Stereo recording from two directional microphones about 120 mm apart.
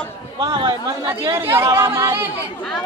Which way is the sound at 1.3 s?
20° right (ahead or behind).